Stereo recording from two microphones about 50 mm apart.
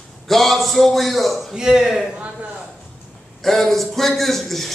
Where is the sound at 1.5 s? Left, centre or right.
Centre.